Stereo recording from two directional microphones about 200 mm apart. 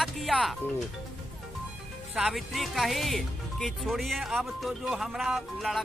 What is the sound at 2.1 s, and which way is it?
Speech, centre (ahead or behind).